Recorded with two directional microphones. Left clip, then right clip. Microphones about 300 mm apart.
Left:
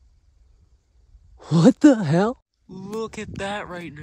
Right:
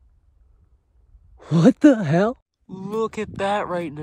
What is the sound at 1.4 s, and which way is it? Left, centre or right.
Speech, centre.